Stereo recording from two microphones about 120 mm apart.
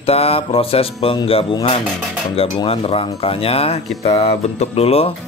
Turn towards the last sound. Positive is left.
turn(degrees=55)  # may be behind; listen again after turning